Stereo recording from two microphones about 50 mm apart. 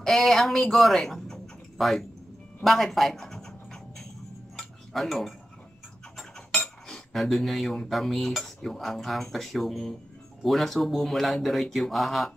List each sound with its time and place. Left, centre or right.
0.0 s speech: centre
2.6 s a sound: centre
4.6 s cutlery: centre
6.6 s speech: centre